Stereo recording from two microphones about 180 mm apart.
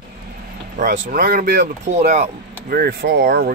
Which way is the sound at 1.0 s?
50° right (ahead or behind).